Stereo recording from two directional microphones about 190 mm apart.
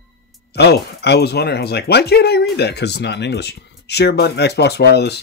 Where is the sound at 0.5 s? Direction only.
60° left (ahead or behind).